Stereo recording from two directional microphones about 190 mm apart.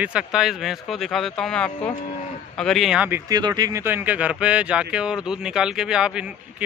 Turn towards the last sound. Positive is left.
turn(degrees=-5)  # may be behind; listen again after turning